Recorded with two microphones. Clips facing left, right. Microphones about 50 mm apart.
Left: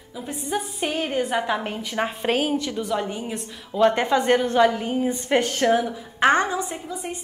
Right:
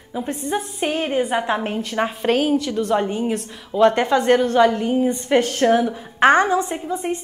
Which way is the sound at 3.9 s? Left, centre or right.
Centre.